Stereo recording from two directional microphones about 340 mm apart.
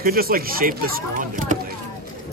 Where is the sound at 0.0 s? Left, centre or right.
Right.